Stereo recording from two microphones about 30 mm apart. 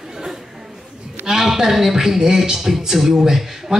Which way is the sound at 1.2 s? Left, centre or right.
Centre.